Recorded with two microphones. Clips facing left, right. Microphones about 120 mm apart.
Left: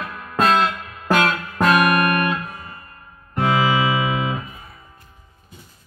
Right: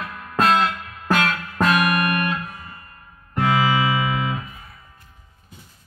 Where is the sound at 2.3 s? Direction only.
20° left (ahead or behind).